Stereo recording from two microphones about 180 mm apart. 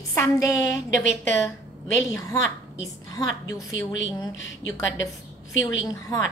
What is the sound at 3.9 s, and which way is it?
A woman's voice, 90° left.